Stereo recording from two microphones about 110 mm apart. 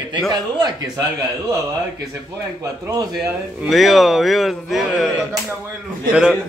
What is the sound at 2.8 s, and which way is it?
Speech, 35° right (ahead or behind).